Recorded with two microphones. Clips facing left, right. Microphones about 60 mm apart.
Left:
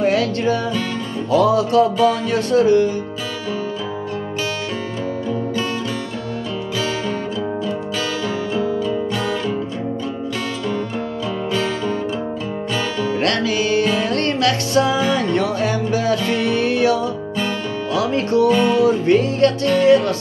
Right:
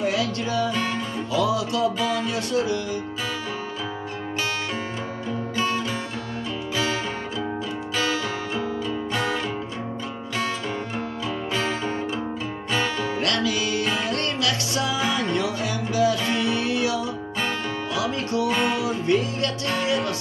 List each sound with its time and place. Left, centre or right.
0.0 s music: left
8.5 s guitar: centre
11.5 s music: right
13.2 s music: left
18.5 s music: centre
18.8 s music: left